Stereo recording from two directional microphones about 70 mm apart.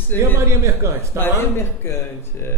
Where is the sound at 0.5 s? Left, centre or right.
Right.